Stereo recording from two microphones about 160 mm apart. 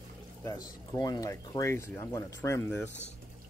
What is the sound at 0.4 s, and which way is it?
Speech, 20° left (ahead or behind).